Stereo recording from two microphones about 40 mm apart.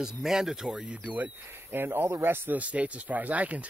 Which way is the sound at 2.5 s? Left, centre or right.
Right.